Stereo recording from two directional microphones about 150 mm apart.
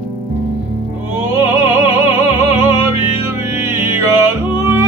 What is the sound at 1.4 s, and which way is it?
Opera, 15° right (ahead or behind).